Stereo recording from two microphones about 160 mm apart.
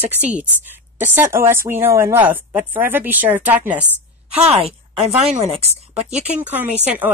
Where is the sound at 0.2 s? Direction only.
10° right (ahead or behind).